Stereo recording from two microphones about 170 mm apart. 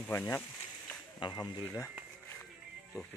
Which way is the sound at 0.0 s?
15° left (ahead or behind).